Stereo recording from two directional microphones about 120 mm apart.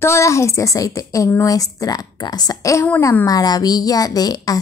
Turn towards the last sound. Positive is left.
turn(degrees=30)  # may be behind; listen again after turning